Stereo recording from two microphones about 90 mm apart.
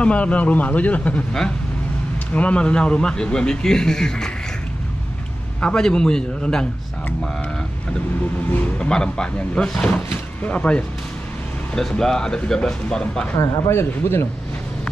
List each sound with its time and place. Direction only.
0.0 s a man's voice: 15° left (ahead or behind)
5.6 s a man's voice: 10° left (ahead or behind)
8.7 s a man's voice: 10° left (ahead or behind)
13.4 s speech: 30° left (ahead or behind)